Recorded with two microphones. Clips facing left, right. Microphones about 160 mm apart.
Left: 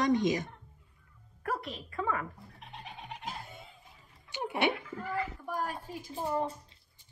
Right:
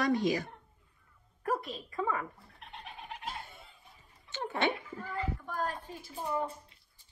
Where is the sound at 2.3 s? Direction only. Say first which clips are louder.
Left 2 dB; centre (ahead or behind).